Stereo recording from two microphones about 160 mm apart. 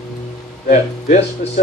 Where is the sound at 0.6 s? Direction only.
45° left (ahead or behind).